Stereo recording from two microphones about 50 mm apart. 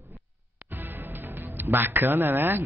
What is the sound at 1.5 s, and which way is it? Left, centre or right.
Speech, right.